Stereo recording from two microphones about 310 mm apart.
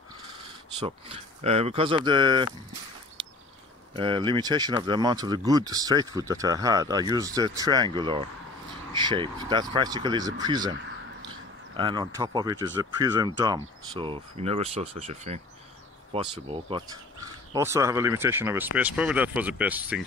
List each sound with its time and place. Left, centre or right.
0.7 s speech: centre
3.9 s speech: centre
11.7 s speech: centre